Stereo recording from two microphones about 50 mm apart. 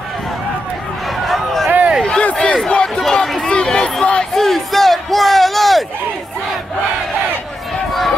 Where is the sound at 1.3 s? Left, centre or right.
Centre.